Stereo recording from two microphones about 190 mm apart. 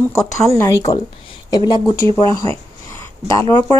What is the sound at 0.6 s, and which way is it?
Speech, 15° left (ahead or behind).